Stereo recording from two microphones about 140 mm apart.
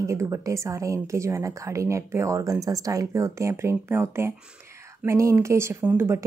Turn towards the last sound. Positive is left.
turn(degrees=-15)  # may be behind; listen again after turning